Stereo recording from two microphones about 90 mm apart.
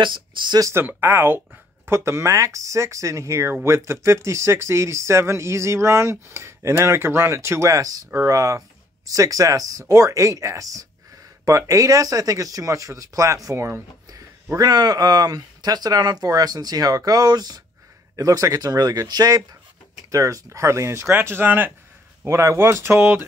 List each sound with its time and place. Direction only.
0.0 s speech: 65° right (ahead or behind)
0.7 s speech: 25° right (ahead or behind)
14.6 s speech: 45° right (ahead or behind); by 23.1 s 30° right (ahead or behind)